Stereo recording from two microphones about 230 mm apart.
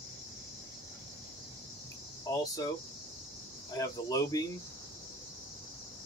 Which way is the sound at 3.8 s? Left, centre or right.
Centre.